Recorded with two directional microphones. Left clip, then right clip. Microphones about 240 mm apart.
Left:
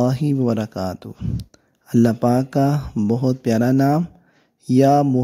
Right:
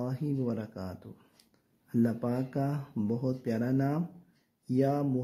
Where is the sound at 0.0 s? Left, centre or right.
Left.